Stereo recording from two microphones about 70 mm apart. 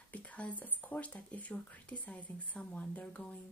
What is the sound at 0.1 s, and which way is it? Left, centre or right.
Speech, centre.